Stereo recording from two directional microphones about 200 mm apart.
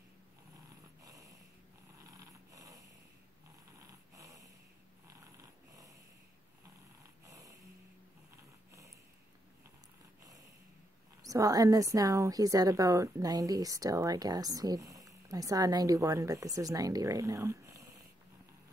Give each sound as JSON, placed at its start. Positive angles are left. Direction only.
{"t": 0.7, "sound": "a sound", "side_deg": -15}
{"t": 2.0, "sound": "snoring", "side_deg": -15}
{"t": 11.2, "sound": "a woman's voice", "side_deg": -15}